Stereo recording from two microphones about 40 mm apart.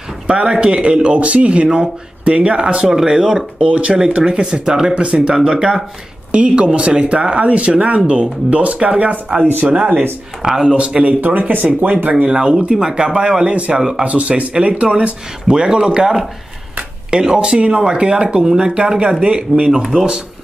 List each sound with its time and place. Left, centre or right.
0.3 s speech: right
3.6 s speech: right
10.4 s speech: centre
10.9 s speech: right
11.1 s speech: right
12.4 s speech: right
14.0 s speech: right
17.1 s speech: centre